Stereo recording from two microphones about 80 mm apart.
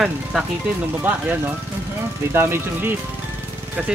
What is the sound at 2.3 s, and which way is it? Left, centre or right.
Speech, right.